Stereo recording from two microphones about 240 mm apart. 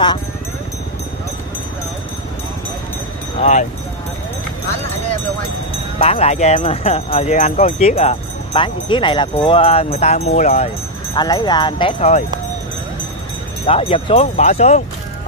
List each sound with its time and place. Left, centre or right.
5.9 s speech: left
11.1 s speech: centre
13.7 s speech: left